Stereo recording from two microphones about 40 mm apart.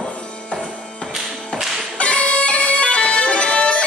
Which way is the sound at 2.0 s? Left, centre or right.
Left.